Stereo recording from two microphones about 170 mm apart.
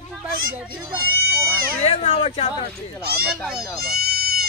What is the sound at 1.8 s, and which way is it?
Speech, 35° left (ahead or behind).